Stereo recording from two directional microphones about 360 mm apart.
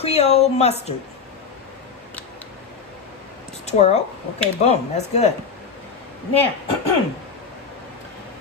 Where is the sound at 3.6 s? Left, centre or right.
Centre.